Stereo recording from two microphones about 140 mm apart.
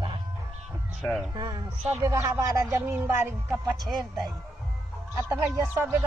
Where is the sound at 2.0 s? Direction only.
25° right (ahead or behind).